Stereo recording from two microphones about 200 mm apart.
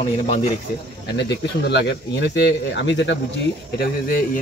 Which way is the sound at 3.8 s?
45° left (ahead or behind).